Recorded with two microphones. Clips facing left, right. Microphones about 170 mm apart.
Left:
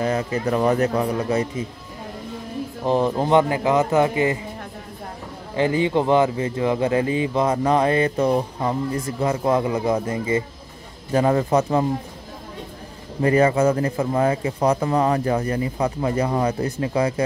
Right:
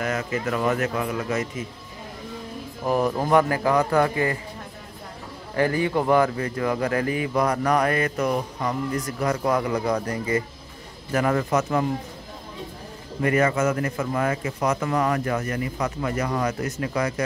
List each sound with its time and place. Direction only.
0.0 s speech: 30° left (ahead or behind)
2.8 s speech: 25° left (ahead or behind)
5.6 s speech: 20° left (ahead or behind)
13.2 s speech: 30° left (ahead or behind)